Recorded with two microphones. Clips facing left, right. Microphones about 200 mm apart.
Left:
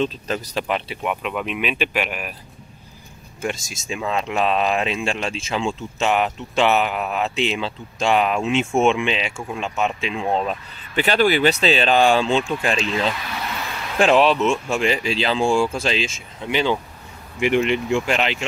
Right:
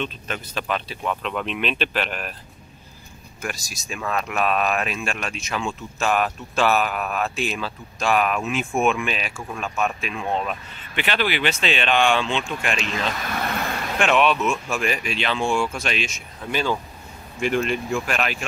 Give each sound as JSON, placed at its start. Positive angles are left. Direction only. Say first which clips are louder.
{"t": 0.0, "sound": "speech", "louder": "left 6 dB", "side_deg": 35}
{"t": 0.7, "sound": "speech", "louder": "even", "side_deg": 20}
{"t": 3.3, "sound": "speech", "louder": "left 5 dB", "side_deg": 25}
{"t": 13.3, "sound": "vehicle", "louder": "right 3 dB", "side_deg": -50}
{"t": 13.9, "sound": "speech", "louder": "left 4 dB", "side_deg": 30}